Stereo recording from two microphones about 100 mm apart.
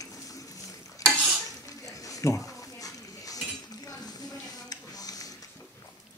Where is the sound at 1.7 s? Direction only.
35° left (ahead or behind).